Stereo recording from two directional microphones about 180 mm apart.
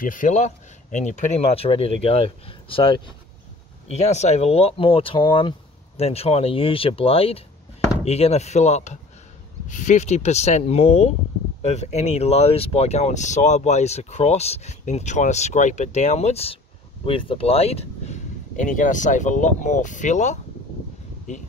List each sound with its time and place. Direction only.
0.0 s speech: 45° left (ahead or behind); by 3.2 s 30° left (ahead or behind)
3.9 s speech: 40° left (ahead or behind)